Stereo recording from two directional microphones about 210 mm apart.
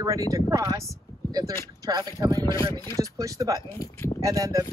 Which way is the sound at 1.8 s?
20° right (ahead or behind).